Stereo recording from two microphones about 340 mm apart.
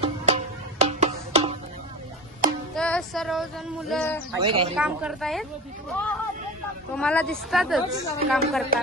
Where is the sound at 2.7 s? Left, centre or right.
Centre.